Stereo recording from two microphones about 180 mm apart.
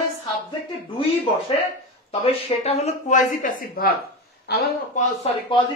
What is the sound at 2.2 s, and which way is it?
Speech, 35° left (ahead or behind).